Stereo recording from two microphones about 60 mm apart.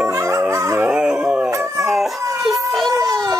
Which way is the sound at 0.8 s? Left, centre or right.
Centre.